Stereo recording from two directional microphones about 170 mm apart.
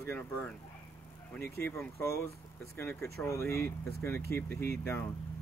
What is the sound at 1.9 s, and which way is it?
Speech, 15° left (ahead or behind).